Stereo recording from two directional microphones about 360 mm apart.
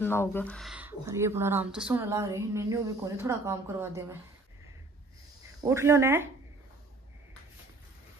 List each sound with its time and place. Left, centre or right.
0.0 s speech: centre
5.6 s speech: centre